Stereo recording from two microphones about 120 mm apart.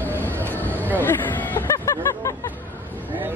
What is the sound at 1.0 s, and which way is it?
Hubbub, 20° left (ahead or behind).